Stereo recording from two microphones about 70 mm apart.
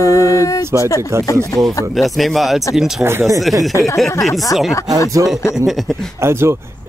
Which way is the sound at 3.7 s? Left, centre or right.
Left.